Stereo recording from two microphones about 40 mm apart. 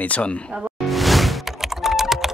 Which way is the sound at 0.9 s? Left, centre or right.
Centre.